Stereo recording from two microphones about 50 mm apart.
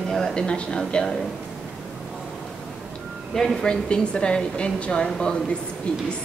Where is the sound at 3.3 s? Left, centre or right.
Centre.